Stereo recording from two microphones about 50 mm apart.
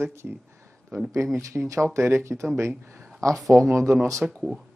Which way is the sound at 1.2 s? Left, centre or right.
Right.